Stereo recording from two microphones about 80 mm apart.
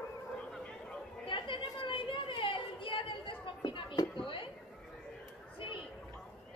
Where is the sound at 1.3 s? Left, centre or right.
Left.